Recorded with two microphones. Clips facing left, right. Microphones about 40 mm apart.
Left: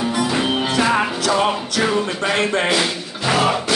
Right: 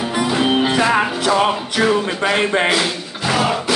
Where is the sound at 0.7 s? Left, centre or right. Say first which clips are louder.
Right 2 dB; centre.